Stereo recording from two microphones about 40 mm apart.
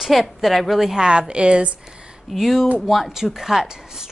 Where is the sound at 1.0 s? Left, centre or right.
Right.